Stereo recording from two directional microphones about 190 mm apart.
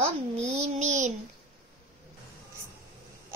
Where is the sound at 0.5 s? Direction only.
35° right (ahead or behind).